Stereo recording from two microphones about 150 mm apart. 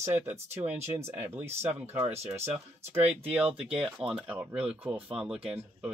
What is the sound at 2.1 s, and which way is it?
Speech, 45° right (ahead or behind).